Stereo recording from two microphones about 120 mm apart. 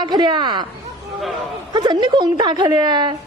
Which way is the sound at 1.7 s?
40° right (ahead or behind).